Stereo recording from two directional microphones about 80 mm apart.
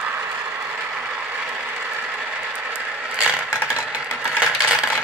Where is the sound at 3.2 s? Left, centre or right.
Centre.